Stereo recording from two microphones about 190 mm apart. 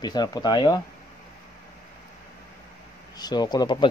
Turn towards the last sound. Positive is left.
turn(degrees=25)  # may be behind; listen again after turning